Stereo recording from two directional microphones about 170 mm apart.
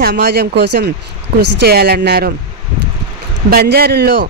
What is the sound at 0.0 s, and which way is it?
Speech, 70° right (ahead or behind).